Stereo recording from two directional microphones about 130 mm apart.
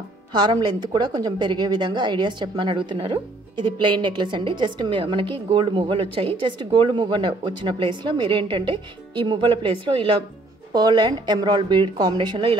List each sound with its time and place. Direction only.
0.3 s a woman's voice: 35° right (ahead or behind)
10.7 s a woman's voice: 30° right (ahead or behind)